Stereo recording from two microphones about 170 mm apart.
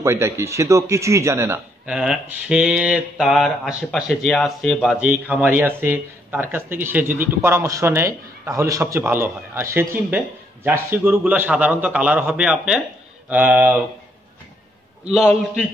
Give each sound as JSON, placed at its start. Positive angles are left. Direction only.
{"t": 0.0, "sound": "speech", "side_deg": -15}
{"t": 2.0, "sound": "speech", "side_deg": -5}